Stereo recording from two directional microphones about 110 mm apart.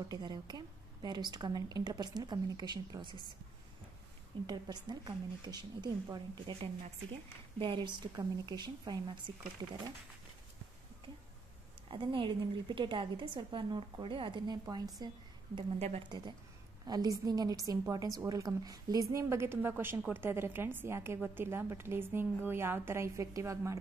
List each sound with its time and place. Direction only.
0.1 s a woman's voice: 40° right (ahead or behind)
4.5 s a woman's voice: 40° right (ahead or behind)
11.9 s a woman's voice: 50° right (ahead or behind)
16.8 s a woman's voice: 35° right (ahead or behind)